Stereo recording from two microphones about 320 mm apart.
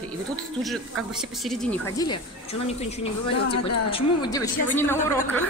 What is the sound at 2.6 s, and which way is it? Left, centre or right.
A woman's voice, centre.